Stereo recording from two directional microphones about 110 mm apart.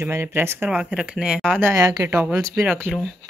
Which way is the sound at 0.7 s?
10° right (ahead or behind).